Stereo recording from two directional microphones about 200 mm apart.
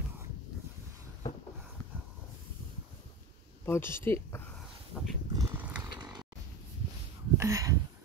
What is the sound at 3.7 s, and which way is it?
Speech, 10° left (ahead or behind).